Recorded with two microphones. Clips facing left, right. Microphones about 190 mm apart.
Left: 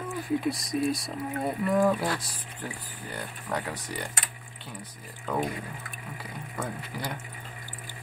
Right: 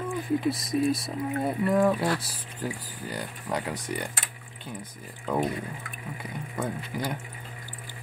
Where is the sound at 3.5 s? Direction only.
15° right (ahead or behind).